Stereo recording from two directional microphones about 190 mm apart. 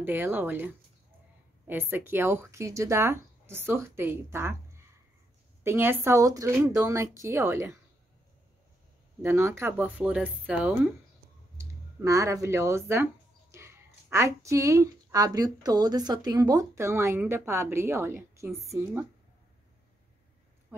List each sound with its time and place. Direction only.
0.0 s a woman's voice: 10° right (ahead or behind)
5.6 s a woman's voice: 10° right (ahead or behind)
9.2 s a woman's voice: 15° right (ahead or behind)
11.5 s a sound: 15° right (ahead or behind)
14.1 s a woman's voice: 15° right (ahead or behind)